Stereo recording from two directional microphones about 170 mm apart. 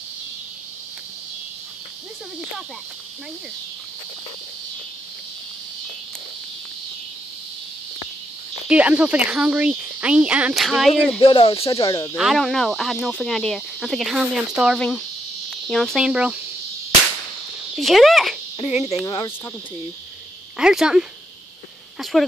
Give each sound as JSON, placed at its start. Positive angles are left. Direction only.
{"t": 8.6, "sound": "speech", "side_deg": -5}
{"t": 11.1, "sound": "speech", "side_deg": 30}
{"t": 12.2, "sound": "speech", "side_deg": 0}
{"t": 17.7, "sound": "speech", "side_deg": 0}
{"t": 18.6, "sound": "speech", "side_deg": 40}
{"t": 19.0, "sound": "speech", "side_deg": 25}
{"t": 20.5, "sound": "speech", "side_deg": -5}
{"t": 22.1, "sound": "speech", "side_deg": 0}